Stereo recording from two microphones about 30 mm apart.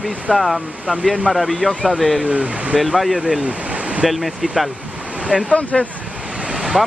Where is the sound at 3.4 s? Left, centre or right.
Right.